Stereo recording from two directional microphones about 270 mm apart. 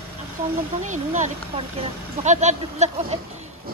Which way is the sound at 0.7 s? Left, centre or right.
Right.